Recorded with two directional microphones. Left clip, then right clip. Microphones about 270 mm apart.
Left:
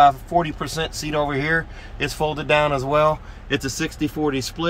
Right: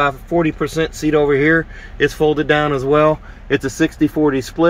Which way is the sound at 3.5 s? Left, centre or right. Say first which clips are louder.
Right 7 dB; centre.